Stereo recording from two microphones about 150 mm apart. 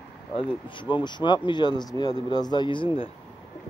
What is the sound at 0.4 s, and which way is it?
Speech, 30° left (ahead or behind).